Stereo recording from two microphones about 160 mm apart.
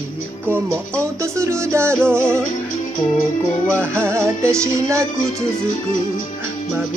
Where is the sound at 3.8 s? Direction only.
15° right (ahead or behind).